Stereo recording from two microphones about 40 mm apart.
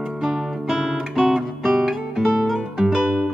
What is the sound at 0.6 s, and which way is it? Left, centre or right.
Guitar, centre.